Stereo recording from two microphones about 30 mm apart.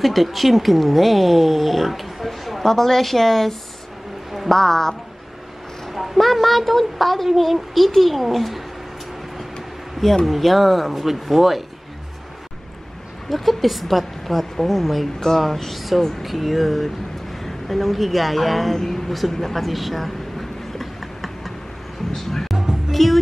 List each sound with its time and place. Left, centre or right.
0.0 s a woman's voice: centre
2.6 s a woman's voice: centre
5.9 s a child's voice: centre
10.2 s a woman's voice: centre
13.3 s a woman's voice: centre
19.3 s a sound: centre
22.1 s speech: centre
22.8 s music: centre